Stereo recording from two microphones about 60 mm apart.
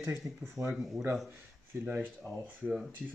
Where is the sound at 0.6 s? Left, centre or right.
Right.